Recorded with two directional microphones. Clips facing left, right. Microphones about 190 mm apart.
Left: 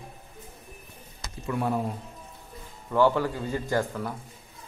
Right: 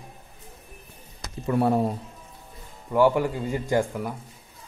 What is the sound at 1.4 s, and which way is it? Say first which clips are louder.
Speech: right 6 dB; 35° right (ahead or behind).